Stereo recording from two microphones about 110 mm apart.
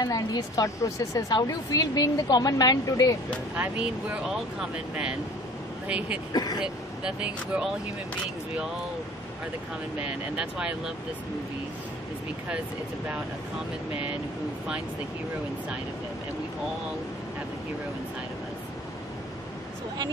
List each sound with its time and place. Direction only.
0.0 s speech: 35° left (ahead or behind)
3.5 s speech: 15° right (ahead or behind)
6.3 s speech: 35° left (ahead or behind)
6.6 s speech: 10° right (ahead or behind)
9.9 s speech: 10° right (ahead or behind)